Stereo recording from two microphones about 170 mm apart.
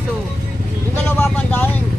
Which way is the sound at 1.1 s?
10° left (ahead or behind).